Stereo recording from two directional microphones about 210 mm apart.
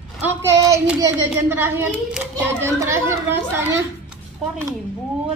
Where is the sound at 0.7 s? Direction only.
10° right (ahead or behind).